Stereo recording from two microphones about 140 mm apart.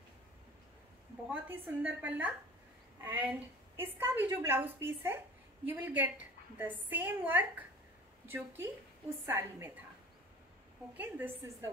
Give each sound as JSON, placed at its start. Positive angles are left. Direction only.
{"t": 1.3, "sound": "a woman's voice", "side_deg": -10}
{"t": 11.0, "sound": "a woman's voice", "side_deg": -20}